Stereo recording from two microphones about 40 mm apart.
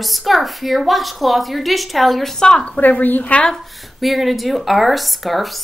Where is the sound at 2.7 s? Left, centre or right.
Left.